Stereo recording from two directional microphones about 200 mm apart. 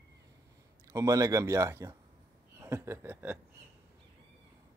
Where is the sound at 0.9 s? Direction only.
15° right (ahead or behind).